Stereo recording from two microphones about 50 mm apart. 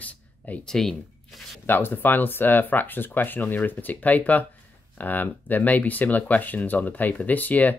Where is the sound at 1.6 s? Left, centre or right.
Left.